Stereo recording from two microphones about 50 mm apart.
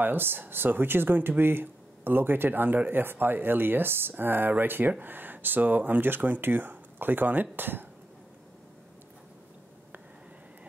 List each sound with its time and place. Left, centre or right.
0.0 s speech: right